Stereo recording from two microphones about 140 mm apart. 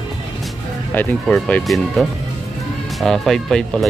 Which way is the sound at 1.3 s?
Centre (ahead or behind).